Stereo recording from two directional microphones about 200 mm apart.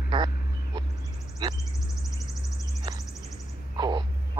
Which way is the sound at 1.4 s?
20° right (ahead or behind).